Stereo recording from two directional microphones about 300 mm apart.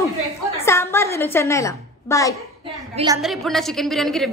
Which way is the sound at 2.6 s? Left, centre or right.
Centre.